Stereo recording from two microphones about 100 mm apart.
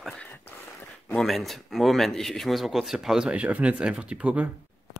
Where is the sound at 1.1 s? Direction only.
Centre (ahead or behind).